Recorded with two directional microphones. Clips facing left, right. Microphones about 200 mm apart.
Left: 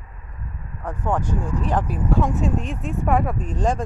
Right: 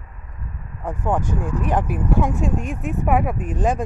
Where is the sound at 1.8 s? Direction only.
15° right (ahead or behind).